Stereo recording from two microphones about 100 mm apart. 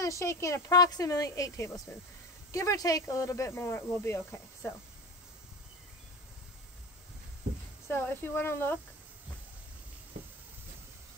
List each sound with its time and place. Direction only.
0.0 s speech: 30° left (ahead or behind)
1.9 s speech: 25° left (ahead or behind)
2.5 s speech: 35° left (ahead or behind)
7.9 s speech: 25° left (ahead or behind)